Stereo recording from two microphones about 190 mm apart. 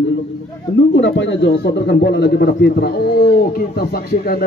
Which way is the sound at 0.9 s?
70° left (ahead or behind).